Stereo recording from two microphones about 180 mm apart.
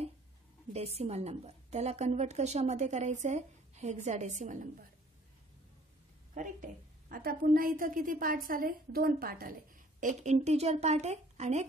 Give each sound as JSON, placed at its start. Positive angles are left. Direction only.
{"t": 0.7, "sound": "a woman's voice", "side_deg": -35}
{"t": 6.3, "sound": "a woman's voice", "side_deg": -45}